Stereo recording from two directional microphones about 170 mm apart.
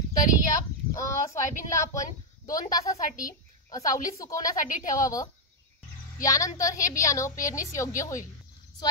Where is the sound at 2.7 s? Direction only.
20° left (ahead or behind).